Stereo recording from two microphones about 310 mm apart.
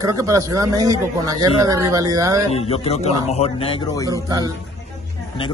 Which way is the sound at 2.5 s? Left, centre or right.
Centre.